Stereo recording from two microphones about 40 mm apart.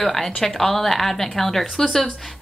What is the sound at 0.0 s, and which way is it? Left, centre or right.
A woman's voice, centre.